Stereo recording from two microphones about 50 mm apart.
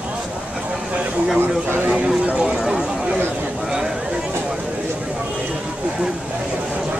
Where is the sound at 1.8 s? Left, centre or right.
Right.